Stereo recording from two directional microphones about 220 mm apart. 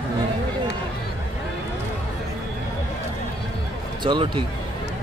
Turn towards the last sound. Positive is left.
turn(degrees=-20)  # may be behind; listen again after turning